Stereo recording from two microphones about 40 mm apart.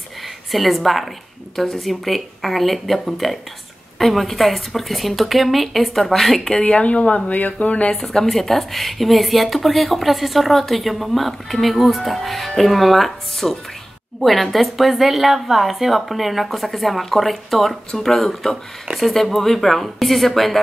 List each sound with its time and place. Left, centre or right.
0.5 s a woman's voice: centre
6.6 s speech: left
7.9 s a woman's voice: centre